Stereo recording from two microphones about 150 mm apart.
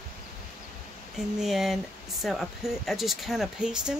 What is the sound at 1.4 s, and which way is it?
Speech, centre (ahead or behind).